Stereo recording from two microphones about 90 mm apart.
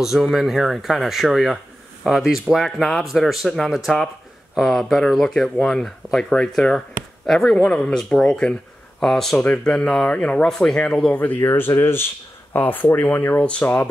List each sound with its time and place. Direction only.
0.0 s speech: 5° right (ahead or behind); by 13.8 s 15° left (ahead or behind)